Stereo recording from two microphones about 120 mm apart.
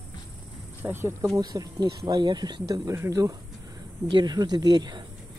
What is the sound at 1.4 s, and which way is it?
Speech, 30° right (ahead or behind).